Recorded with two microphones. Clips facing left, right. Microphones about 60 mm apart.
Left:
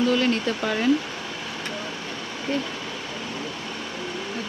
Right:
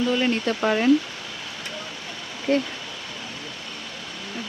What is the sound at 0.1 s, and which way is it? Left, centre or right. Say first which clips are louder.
Speech: even; centre.